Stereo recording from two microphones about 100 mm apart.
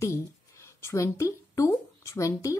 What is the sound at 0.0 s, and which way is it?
A woman's voice, 30° left (ahead or behind).